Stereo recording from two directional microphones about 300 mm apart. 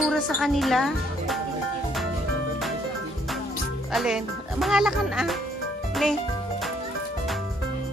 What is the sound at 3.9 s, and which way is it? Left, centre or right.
Speech, centre.